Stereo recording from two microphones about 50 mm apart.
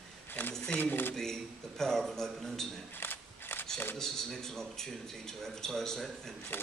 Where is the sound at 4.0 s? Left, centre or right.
Centre.